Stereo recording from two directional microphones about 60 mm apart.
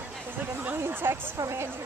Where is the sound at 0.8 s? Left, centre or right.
Right.